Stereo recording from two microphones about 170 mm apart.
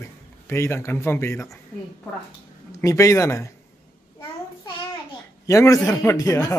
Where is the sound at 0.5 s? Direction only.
15° left (ahead or behind).